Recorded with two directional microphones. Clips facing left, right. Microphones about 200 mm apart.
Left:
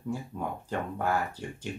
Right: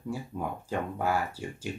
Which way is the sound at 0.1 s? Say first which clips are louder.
Even; 10° right (ahead or behind).